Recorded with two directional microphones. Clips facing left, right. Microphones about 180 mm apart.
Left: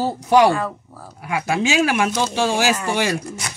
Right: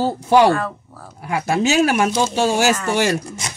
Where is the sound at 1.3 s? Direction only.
40° right (ahead or behind).